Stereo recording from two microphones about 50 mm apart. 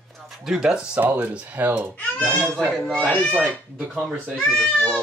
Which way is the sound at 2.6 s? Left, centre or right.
Centre.